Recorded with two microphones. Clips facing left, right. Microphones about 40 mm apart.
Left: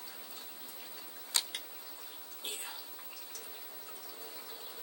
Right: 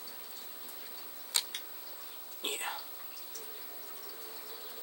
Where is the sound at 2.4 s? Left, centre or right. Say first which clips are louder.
Right 7 dB; right.